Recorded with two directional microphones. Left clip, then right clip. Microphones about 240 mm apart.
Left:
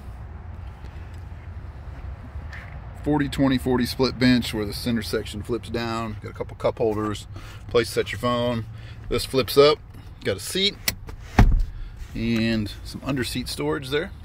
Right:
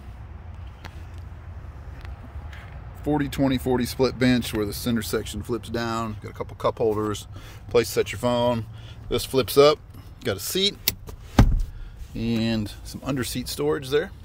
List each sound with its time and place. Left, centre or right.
3.1 s speech: centre
12.1 s speech: centre